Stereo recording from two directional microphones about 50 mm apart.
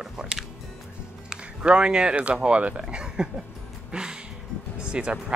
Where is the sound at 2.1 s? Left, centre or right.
Right.